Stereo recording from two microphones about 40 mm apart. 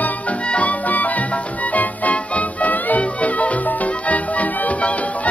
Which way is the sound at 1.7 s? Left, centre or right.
Left.